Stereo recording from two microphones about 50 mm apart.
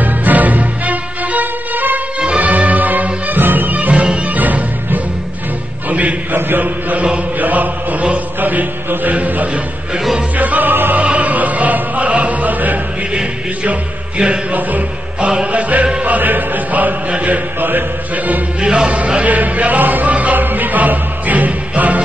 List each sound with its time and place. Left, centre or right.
0.0 s music: right
2.1 s music: right
4.4 s music: right
6.3 s chant: right
8.4 s mantra: right
10.3 s music: right
11.0 s music: right
13.7 s music: right